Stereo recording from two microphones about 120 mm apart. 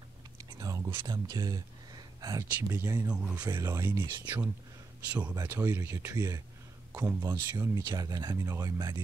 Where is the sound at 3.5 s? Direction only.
25° right (ahead or behind).